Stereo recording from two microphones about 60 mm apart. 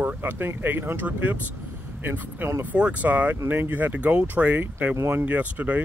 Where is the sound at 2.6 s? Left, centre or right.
Right.